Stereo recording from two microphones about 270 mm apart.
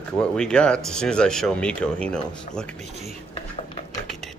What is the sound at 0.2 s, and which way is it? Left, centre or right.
Speech, centre.